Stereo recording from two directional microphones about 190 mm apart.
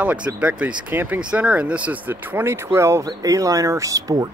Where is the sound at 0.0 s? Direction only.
10° right (ahead or behind).